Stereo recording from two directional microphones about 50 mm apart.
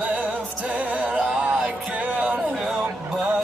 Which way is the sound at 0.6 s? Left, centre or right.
Right.